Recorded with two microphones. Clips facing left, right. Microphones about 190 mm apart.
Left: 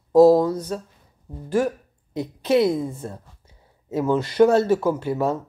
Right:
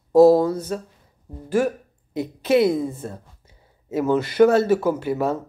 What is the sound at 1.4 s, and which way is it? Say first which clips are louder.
Speech: right 1 dB; 5° right (ahead or behind).